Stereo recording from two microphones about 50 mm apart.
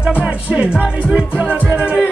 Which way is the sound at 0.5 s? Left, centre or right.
Right.